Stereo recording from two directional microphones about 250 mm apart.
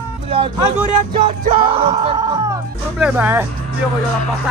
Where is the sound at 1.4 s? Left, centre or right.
Right.